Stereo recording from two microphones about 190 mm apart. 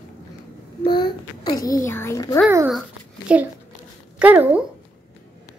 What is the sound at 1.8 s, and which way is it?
Speech, 15° left (ahead or behind).